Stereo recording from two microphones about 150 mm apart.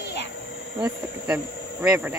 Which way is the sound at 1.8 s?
5° right (ahead or behind).